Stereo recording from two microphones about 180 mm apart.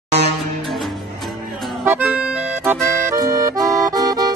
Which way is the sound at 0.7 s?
Centre (ahead or behind).